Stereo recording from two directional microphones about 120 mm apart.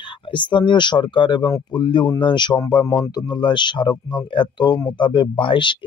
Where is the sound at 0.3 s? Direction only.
40° left (ahead or behind).